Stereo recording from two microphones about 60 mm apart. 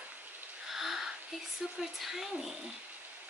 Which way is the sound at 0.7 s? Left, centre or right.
Centre.